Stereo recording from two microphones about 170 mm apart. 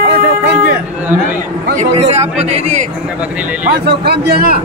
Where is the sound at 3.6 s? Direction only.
65° right (ahead or behind).